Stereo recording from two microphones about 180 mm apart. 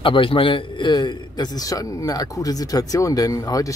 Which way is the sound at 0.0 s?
30° left (ahead or behind).